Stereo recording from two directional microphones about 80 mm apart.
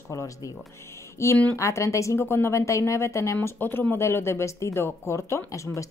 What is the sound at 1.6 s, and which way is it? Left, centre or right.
Speech, left.